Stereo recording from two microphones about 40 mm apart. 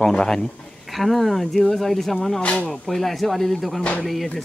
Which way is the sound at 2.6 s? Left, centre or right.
Centre.